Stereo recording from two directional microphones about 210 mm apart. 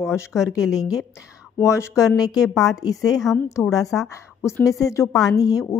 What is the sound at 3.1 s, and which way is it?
Speech, centre (ahead or behind).